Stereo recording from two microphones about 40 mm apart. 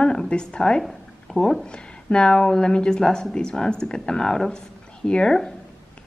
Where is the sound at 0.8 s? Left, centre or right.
Centre.